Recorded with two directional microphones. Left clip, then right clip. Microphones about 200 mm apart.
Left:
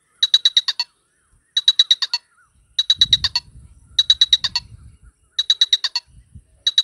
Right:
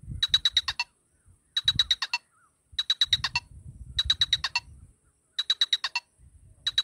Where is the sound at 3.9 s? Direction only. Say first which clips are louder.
Left 11 dB; 35° right (ahead or behind).